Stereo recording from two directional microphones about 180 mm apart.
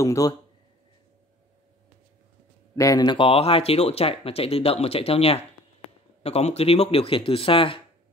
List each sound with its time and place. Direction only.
0.0 s speech: 20° left (ahead or behind)
2.7 s speech: 20° left (ahead or behind)